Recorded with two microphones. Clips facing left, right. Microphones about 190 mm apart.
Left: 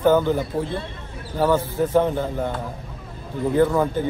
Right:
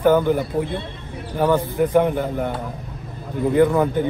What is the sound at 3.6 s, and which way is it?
Speech, 15° right (ahead or behind).